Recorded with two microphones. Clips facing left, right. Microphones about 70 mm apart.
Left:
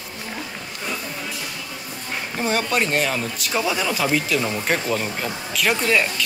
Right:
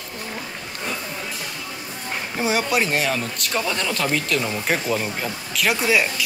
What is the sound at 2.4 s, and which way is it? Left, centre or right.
Speech, centre.